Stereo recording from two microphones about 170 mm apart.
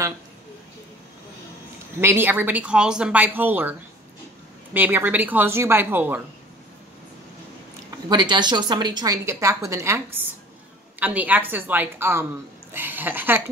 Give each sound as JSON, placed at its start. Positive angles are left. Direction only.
{"t": 2.0, "sound": "speech", "side_deg": -15}
{"t": 4.7, "sound": "speech", "side_deg": -10}
{"t": 8.1, "sound": "a woman's voice", "side_deg": -25}